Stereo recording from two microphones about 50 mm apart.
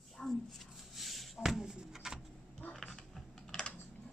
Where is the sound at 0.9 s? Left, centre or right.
Centre.